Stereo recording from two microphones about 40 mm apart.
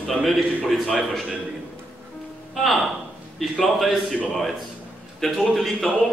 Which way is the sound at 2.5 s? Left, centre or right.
Centre.